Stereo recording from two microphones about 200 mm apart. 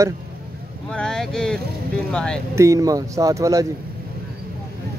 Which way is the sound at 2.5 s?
15° right (ahead or behind).